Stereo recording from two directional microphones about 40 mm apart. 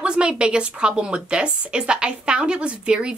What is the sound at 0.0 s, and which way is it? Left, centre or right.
Speech, right.